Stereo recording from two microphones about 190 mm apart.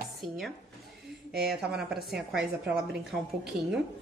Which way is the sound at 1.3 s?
55° right (ahead or behind).